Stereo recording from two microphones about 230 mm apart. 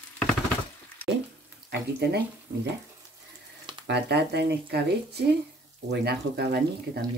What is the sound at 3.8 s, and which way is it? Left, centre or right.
Speech, right.